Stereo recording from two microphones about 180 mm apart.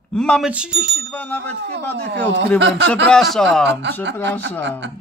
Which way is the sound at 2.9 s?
5° left (ahead or behind).